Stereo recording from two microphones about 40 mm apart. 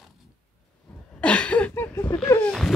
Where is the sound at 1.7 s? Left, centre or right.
Left.